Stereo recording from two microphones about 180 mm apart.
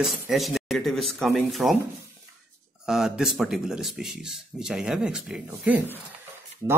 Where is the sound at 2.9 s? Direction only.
Centre (ahead or behind).